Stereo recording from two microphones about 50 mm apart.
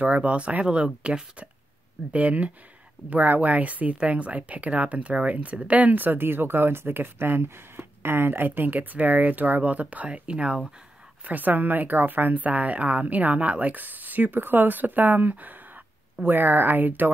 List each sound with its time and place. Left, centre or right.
0.0 s speech: right
11.2 s speech: right